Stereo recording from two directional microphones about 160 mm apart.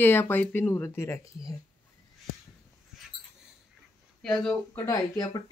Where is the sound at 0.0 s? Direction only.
15° left (ahead or behind).